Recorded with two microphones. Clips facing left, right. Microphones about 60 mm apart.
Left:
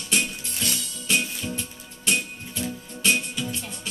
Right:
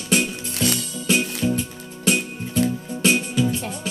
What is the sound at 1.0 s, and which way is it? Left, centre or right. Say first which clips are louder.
Music: right 6 dB; centre.